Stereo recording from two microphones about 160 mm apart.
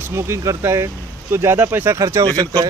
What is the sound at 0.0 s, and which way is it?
Speech, 15° right (ahead or behind).